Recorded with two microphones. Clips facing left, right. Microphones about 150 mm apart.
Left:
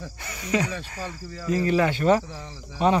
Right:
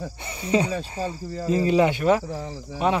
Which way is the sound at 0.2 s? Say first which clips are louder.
Right 3 dB; 30° right (ahead or behind).